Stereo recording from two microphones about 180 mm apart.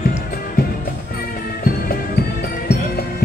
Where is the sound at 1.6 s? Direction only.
55° left (ahead or behind).